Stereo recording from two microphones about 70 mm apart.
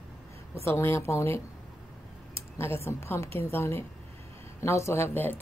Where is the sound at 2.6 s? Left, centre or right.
Left.